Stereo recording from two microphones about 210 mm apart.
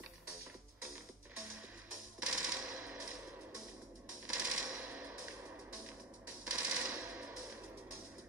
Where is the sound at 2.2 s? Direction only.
5° right (ahead or behind).